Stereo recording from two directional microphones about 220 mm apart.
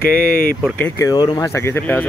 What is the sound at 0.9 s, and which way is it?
Speech, 15° left (ahead or behind).